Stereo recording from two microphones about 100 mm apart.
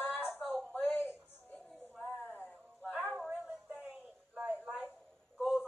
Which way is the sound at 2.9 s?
15° right (ahead or behind).